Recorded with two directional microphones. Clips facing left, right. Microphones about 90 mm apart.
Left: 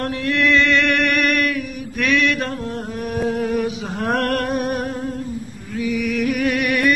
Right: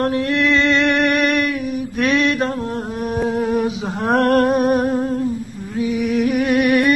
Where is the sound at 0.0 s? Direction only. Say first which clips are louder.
Right 2 dB; 30° right (ahead or behind).